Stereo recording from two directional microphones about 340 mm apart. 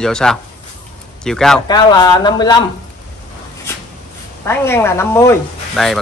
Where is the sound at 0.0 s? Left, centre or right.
Centre.